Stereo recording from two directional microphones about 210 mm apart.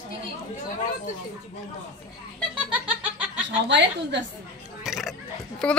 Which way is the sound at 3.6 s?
55° right (ahead or behind).